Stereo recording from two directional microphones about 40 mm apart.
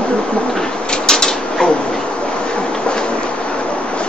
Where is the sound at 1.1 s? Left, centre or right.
Centre.